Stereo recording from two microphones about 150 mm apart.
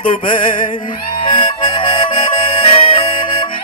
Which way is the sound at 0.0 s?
65° left (ahead or behind).